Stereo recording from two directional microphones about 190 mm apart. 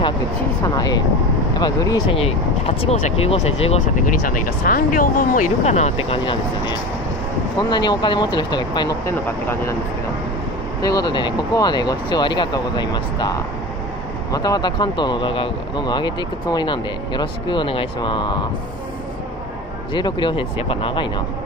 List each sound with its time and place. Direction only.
1.6 s speech: 20° left (ahead or behind)
4.2 s speech: 50° left (ahead or behind); by 9.8 s 15° left (ahead or behind)
10.8 s speech: 20° left (ahead or behind)
19.9 s speech: 25° left (ahead or behind)